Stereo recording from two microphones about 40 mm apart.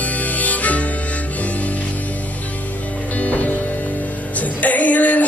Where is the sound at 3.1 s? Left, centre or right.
Left.